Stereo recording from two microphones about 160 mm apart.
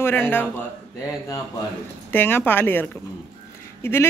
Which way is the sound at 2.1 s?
10° left (ahead or behind).